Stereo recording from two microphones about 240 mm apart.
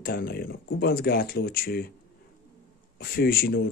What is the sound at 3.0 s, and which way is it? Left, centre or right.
Speech, left.